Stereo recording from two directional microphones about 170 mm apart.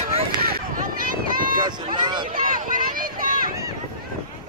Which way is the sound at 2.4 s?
55° right (ahead or behind).